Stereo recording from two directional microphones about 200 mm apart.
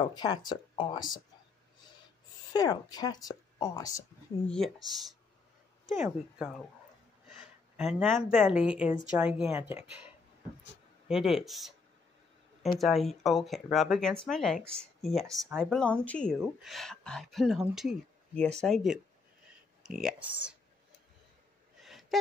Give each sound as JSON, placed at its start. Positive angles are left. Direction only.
{"t": 0.0, "sound": "a woman's voice", "side_deg": 20}
{"t": 2.5, "sound": "a woman's voice", "side_deg": 20}
{"t": 4.5, "sound": "speech", "side_deg": 0}
{"t": 7.2, "sound": "a sound", "side_deg": 0}
{"t": 8.0, "sound": "speech", "side_deg": 0}
{"t": 11.1, "sound": "speech", "side_deg": 0}
{"t": 12.7, "sound": "speech", "side_deg": 0}
{"t": 21.8, "sound": "a sound", "side_deg": 0}